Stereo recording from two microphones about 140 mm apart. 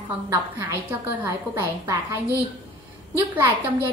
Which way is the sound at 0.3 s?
20° right (ahead or behind).